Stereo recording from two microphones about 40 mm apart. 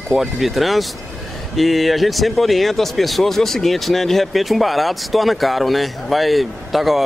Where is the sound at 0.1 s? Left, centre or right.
Centre.